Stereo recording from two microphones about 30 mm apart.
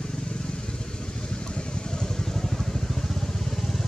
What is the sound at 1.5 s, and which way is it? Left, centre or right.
Vehicle, left.